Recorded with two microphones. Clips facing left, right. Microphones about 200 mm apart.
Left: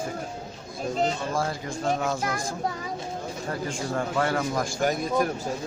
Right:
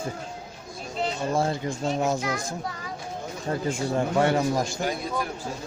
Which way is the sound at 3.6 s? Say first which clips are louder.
Right 4 dB; 20° right (ahead or behind).